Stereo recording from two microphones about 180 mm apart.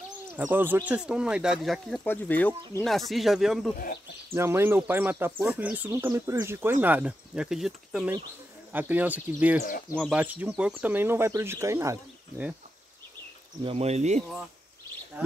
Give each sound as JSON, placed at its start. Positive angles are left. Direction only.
{"t": 0.4, "sound": "speech", "side_deg": -10}
{"t": 3.7, "sound": "speech", "side_deg": 50}
{"t": 4.3, "sound": "speech", "side_deg": -15}
{"t": 13.6, "sound": "speech", "side_deg": -35}
{"t": 15.2, "sound": "speech", "side_deg": -10}